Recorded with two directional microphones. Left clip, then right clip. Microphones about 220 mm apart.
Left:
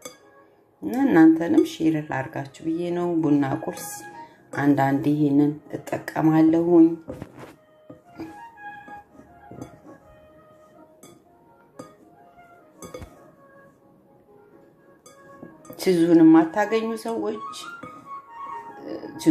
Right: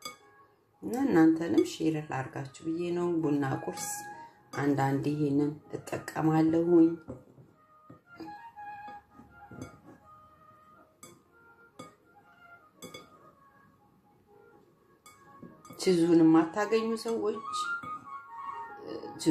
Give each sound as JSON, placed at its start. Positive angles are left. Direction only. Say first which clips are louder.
{"t": 0.7, "sound": "speech", "louder": "left 8 dB", "side_deg": 15}
{"t": 15.7, "sound": "speech", "louder": "left 7 dB", "side_deg": 15}